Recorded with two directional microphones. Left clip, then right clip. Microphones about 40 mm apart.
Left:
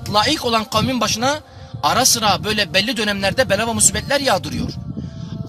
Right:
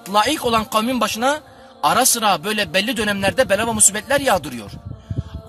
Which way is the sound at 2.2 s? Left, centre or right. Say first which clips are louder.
Left 1 dB; right.